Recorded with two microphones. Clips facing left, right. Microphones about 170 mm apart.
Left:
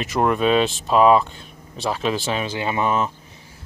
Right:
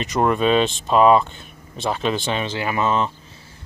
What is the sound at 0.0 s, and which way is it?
Speech, centre (ahead or behind).